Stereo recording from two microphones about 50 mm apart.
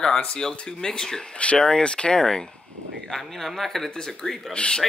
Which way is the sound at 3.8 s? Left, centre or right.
Centre.